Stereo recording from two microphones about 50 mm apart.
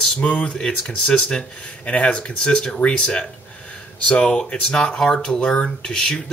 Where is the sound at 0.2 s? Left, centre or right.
Left.